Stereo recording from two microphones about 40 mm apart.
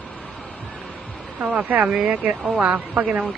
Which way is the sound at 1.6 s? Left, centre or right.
Right.